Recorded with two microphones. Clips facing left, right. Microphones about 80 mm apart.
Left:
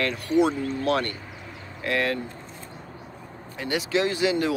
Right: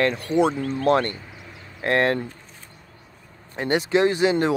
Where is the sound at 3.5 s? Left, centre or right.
Right.